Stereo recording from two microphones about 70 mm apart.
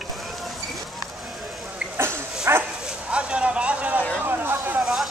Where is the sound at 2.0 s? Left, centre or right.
Right.